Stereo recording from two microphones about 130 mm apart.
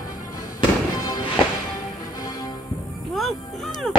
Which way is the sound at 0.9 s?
30° left (ahead or behind).